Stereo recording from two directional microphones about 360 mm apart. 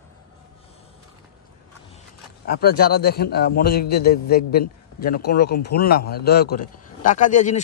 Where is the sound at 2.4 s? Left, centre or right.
Left.